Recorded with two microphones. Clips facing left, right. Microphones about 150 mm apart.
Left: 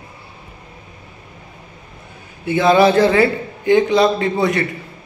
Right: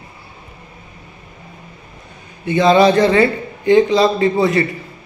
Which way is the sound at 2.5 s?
5° left (ahead or behind).